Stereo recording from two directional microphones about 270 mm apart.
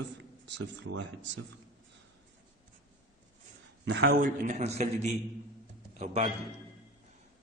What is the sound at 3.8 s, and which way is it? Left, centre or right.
A man's voice, right.